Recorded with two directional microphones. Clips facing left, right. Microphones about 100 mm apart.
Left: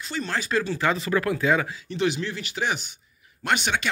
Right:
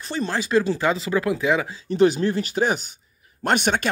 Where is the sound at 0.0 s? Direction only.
35° right (ahead or behind).